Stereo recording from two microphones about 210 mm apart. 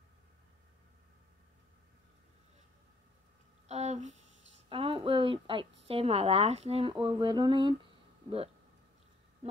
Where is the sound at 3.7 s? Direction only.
30° right (ahead or behind).